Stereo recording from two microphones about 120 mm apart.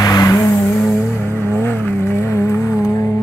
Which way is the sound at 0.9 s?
15° left (ahead or behind).